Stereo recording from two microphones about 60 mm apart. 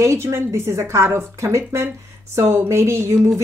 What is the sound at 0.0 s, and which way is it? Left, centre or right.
Speech, right.